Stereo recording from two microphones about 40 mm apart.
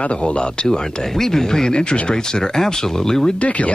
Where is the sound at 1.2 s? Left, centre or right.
Centre.